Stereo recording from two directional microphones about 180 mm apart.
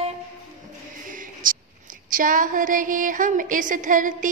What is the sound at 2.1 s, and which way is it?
A woman's voice, 50° right (ahead or behind).